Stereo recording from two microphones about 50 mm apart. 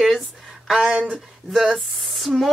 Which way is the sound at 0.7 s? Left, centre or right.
Centre.